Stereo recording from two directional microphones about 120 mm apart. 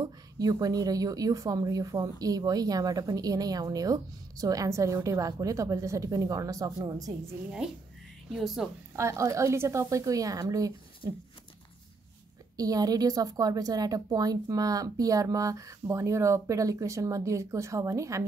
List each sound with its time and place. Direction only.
0.0 s a woman's voice: 30° right (ahead or behind)
8.3 s a woman's voice: centre (ahead or behind)
8.9 s a woman's voice: 25° right (ahead or behind)
12.5 s a woman's voice: 30° right (ahead or behind)